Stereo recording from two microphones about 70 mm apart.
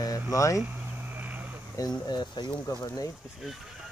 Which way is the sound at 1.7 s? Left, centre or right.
Left.